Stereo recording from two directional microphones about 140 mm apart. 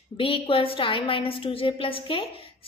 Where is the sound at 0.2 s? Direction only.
40° left (ahead or behind).